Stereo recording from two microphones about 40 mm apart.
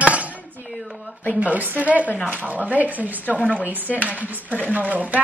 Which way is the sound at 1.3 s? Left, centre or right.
Right.